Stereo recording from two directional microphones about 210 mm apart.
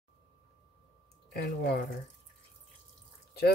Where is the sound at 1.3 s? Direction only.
50° left (ahead or behind).